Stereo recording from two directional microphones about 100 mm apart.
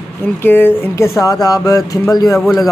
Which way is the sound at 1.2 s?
35° left (ahead or behind).